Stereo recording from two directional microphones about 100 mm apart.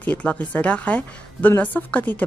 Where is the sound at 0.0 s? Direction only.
15° left (ahead or behind).